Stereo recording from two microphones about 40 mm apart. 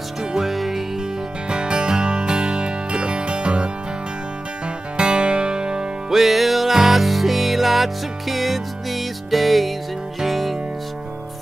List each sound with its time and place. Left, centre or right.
0.2 s music: centre
0.5 s music: centre
1.5 s music: right
4.9 s music: right
6.1 s music: centre